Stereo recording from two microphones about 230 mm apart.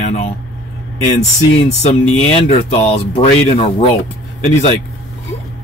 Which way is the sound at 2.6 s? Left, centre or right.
Left.